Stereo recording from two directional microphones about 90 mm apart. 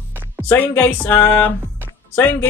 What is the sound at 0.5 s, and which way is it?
Speech, 20° left (ahead or behind).